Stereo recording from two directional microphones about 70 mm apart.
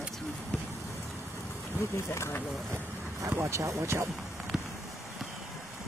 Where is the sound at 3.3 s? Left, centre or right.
Right.